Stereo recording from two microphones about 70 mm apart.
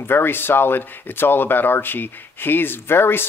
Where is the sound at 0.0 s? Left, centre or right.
Left.